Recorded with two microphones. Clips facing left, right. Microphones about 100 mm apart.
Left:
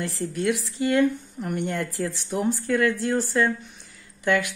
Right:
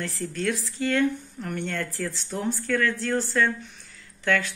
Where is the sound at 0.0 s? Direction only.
15° left (ahead or behind).